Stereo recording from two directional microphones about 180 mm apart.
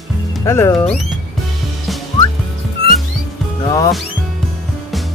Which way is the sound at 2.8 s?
30° right (ahead or behind).